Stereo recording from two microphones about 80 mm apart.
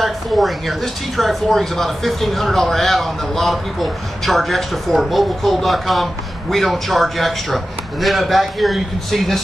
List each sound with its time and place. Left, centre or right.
0.0 s speech: centre